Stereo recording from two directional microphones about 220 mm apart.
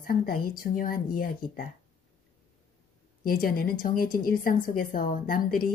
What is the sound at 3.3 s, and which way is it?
A woman's voice, 40° left (ahead or behind).